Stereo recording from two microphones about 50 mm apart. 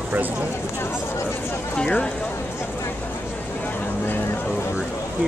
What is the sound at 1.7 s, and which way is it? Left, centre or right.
Speech, left.